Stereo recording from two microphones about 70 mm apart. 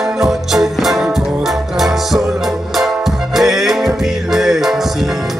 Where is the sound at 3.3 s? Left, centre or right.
Centre.